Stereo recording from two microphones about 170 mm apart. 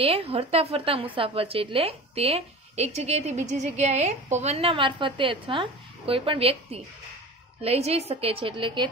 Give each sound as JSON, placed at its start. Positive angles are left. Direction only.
{"t": 0.0, "sound": "a woman's voice", "side_deg": -35}